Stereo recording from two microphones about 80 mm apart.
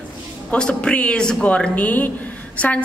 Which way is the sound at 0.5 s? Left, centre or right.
Centre.